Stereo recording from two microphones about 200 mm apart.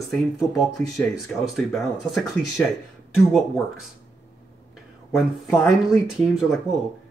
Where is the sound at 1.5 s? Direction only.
Centre (ahead or behind).